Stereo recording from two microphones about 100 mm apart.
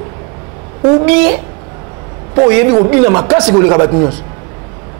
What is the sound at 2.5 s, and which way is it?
A man's voice, 5° left (ahead or behind).